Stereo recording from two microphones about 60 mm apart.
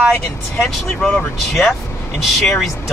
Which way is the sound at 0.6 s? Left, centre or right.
Centre.